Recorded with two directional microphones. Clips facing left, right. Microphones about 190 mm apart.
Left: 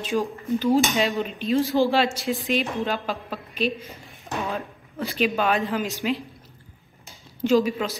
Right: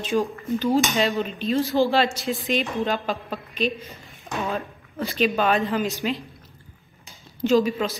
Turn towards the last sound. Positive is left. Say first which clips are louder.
# even
turn(degrees=10)  # may be behind; listen again after turning